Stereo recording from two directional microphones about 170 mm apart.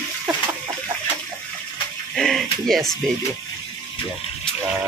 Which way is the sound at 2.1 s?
Centre (ahead or behind).